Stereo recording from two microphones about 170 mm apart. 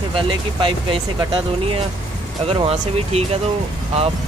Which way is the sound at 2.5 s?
35° right (ahead or behind).